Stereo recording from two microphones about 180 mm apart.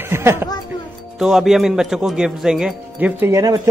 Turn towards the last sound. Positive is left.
turn(degrees=-15)  # may be behind; listen again after turning